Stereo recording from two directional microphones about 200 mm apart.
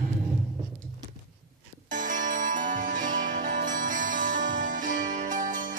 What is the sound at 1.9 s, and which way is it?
Music, 40° right (ahead or behind).